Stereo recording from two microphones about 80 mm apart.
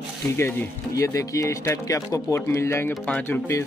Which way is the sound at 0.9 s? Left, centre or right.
Left.